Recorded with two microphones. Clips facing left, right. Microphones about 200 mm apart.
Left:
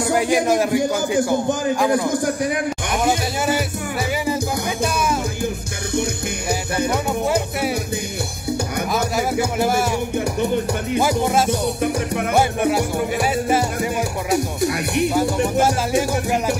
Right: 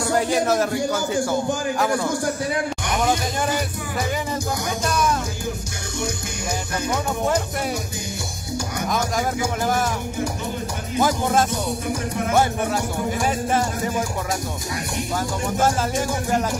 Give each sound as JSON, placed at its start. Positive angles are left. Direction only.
{"t": 0.1, "sound": "a man's voice", "side_deg": 15}
{"t": 6.9, "sound": "music", "side_deg": 10}
{"t": 8.9, "sound": "speech", "side_deg": 10}
{"t": 11.0, "sound": "a man's voice", "side_deg": 10}
{"t": 14.6, "sound": "music", "side_deg": 65}
{"t": 15.1, "sound": "a man's voice", "side_deg": 10}